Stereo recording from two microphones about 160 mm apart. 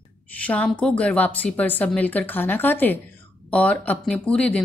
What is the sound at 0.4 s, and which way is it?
Speech, 10° left (ahead or behind).